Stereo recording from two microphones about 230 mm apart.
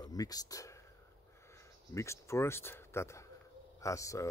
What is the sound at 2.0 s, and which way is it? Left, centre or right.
Speech, centre.